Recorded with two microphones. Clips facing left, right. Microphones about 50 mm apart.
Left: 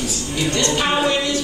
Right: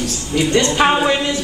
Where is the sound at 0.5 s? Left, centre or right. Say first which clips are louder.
Right 5 dB; right.